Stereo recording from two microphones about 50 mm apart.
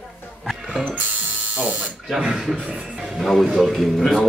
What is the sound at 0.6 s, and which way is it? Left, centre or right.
Music, centre.